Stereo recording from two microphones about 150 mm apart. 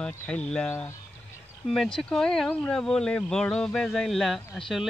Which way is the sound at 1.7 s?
5° left (ahead or behind).